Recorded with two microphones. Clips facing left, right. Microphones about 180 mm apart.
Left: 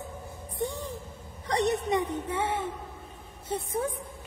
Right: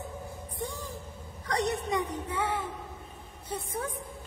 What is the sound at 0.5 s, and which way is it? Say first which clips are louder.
Music: left 6 dB; 20° left (ahead or behind).